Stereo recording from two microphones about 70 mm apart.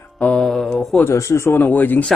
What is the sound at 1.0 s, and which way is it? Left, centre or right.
Speech, left.